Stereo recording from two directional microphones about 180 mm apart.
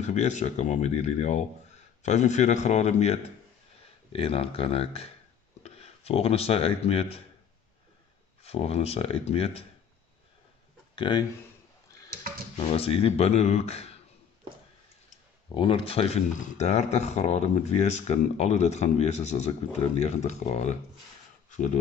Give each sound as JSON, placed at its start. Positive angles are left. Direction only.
{"t": 0.0, "sound": "speech", "side_deg": 40}
{"t": 8.4, "sound": "speech", "side_deg": 35}
{"t": 11.0, "sound": "speech", "side_deg": 25}
{"t": 12.6, "sound": "speech", "side_deg": 35}
{"t": 15.5, "sound": "speech", "side_deg": 30}
{"t": 21.5, "sound": "a sound", "side_deg": 45}